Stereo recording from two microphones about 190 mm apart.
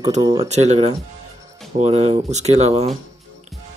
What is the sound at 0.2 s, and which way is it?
Speech, 25° right (ahead or behind).